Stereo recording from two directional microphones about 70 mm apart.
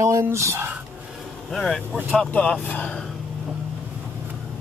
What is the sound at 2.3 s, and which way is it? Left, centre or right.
Speech, centre.